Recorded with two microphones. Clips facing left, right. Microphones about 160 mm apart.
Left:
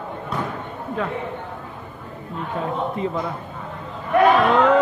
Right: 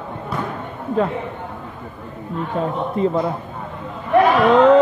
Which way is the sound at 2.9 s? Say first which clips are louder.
Right 6 dB; 35° right (ahead or behind).